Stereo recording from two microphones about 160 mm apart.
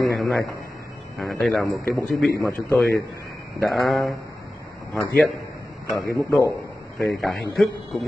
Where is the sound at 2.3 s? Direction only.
15° left (ahead or behind).